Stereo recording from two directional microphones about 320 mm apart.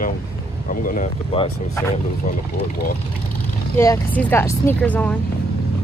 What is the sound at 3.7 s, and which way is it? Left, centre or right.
Speech, centre.